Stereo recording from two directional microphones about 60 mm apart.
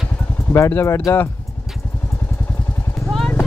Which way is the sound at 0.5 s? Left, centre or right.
Left.